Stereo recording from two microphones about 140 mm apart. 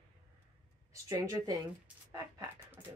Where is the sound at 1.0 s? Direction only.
25° right (ahead or behind).